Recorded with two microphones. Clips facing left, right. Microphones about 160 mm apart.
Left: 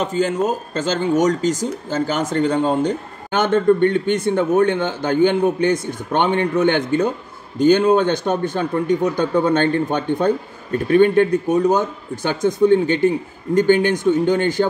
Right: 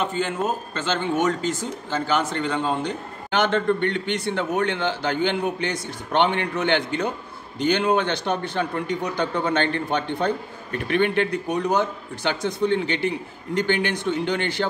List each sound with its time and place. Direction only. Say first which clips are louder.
0.0 s speech: left 5 dB; 40° left (ahead or behind)